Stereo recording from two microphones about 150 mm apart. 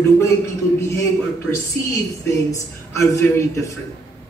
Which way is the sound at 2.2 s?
20° left (ahead or behind).